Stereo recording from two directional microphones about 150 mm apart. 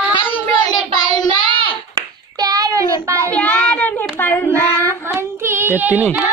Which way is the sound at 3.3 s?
10° left (ahead or behind).